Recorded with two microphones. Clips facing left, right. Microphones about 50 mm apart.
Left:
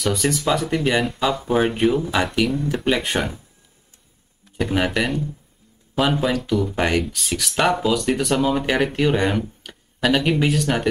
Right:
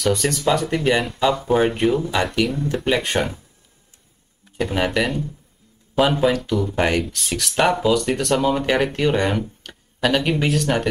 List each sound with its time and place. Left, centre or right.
0.0 s speech: centre
4.6 s speech: centre